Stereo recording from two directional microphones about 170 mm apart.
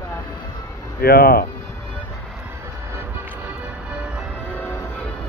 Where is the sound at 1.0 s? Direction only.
65° left (ahead or behind).